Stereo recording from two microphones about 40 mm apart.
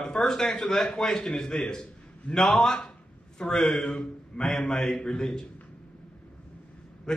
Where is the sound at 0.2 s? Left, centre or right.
Centre.